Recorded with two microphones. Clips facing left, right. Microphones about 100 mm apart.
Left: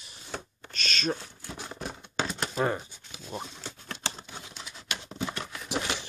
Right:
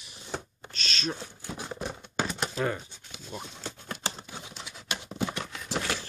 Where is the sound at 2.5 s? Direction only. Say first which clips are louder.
Left 3 dB; 30° left (ahead or behind).